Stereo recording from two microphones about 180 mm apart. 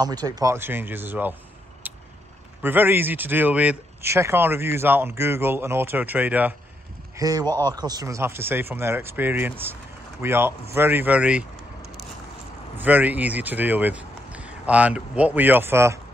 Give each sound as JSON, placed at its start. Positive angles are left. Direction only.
{"t": 0.0, "sound": "speech", "side_deg": -20}
{"t": 2.6, "sound": "speech", "side_deg": -10}
{"t": 7.2, "sound": "speech", "side_deg": -20}
{"t": 7.4, "sound": "speech", "side_deg": 10}
{"t": 7.7, "sound": "speech", "side_deg": -20}
{"t": 12.7, "sound": "speech", "side_deg": -10}